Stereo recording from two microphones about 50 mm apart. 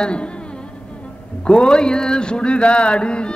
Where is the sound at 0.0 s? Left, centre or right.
Centre.